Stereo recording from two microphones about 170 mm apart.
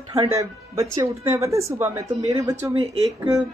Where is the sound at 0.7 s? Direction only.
20° right (ahead or behind).